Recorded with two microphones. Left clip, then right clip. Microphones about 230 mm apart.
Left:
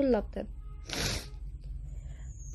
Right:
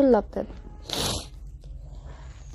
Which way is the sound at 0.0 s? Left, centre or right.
Centre.